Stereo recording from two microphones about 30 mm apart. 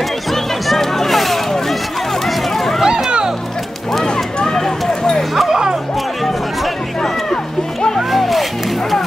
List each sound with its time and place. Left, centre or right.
0.3 s music: centre
2.2 s a sound: centre
4.0 s run: left
4.6 s a sound: left
5.5 s music: centre
8.1 s music: centre